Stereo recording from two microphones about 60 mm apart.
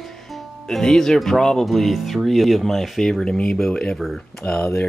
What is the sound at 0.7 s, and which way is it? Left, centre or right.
Speech, centre.